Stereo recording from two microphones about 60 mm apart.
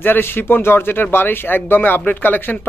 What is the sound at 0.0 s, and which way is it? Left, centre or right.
Speech, left.